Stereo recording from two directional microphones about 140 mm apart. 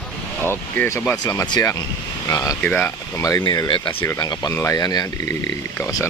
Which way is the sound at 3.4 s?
30° left (ahead or behind).